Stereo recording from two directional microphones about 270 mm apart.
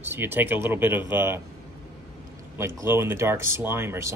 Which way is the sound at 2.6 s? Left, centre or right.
Centre.